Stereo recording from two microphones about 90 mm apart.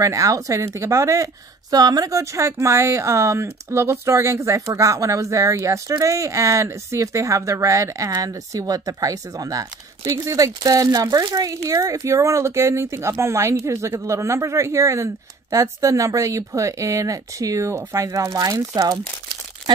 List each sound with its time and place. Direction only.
0.0 s speech: 40° right (ahead or behind)